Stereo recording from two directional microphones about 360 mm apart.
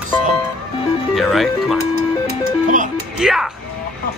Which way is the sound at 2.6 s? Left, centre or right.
Right.